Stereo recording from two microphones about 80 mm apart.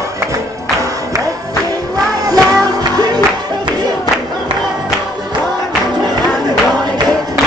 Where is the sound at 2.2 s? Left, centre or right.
Right.